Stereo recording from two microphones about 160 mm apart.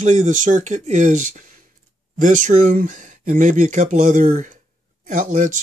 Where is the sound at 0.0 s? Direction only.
55° right (ahead or behind).